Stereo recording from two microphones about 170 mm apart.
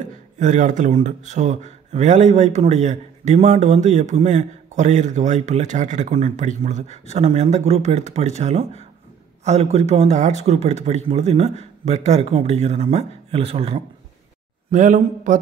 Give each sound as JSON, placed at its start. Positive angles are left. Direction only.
{"t": 0.4, "sound": "a man's voice", "side_deg": -45}
{"t": 14.7, "sound": "speech", "side_deg": -45}